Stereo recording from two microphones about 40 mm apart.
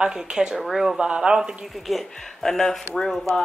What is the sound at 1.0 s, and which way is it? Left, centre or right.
Speech, right.